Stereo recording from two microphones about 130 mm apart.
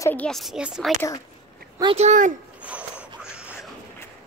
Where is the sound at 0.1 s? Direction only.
10° left (ahead or behind).